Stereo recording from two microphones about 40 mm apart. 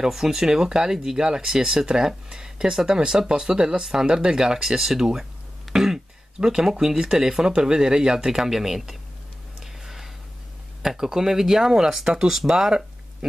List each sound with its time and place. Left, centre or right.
0.0 s speech: centre
5.7 s throat clearing: centre
6.4 s speech: centre
9.6 s a sound: centre
10.8 s speech: centre